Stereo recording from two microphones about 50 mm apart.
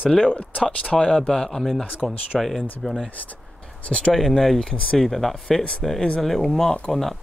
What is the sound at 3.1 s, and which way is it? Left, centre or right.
Speech, left.